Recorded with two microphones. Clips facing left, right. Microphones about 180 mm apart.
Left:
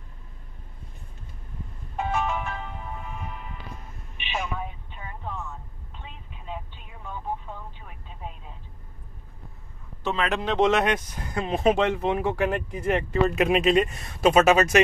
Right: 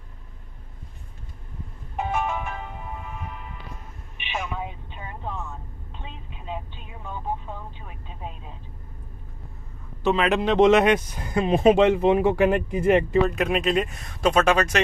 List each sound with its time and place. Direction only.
2.0 s music: 10° right (ahead or behind)
4.2 s vehicle: 15° right (ahead or behind)
10.0 s speech: 15° right (ahead or behind)
13.3 s speech: centre (ahead or behind)